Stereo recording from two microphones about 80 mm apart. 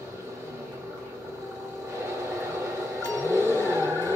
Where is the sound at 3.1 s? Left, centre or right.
Right.